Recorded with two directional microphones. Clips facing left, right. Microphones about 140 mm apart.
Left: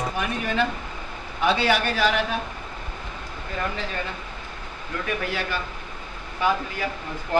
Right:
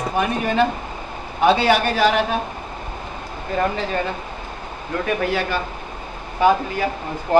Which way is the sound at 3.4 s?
35° right (ahead or behind).